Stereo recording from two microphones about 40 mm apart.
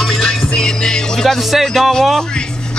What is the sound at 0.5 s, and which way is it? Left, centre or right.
Speech, centre.